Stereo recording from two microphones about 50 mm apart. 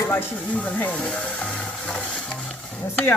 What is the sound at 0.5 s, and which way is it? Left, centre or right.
Speech, left.